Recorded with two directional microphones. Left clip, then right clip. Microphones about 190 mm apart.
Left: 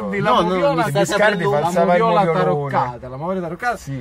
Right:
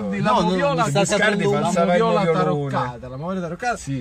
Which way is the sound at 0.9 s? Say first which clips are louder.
Left 3 dB; 30° left (ahead or behind).